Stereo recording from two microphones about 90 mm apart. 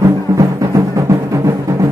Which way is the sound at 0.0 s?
40° right (ahead or behind).